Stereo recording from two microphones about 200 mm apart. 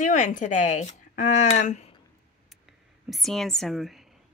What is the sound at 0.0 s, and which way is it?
Speech, 40° left (ahead or behind).